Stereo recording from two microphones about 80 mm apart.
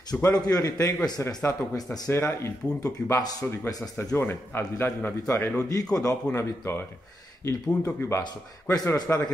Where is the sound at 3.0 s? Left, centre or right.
Centre.